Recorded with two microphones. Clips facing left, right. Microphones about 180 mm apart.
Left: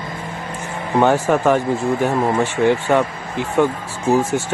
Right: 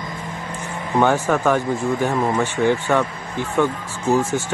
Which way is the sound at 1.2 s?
10° left (ahead or behind).